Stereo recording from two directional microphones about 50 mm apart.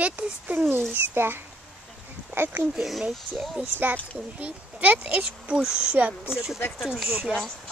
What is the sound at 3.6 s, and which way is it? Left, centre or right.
Speech, right.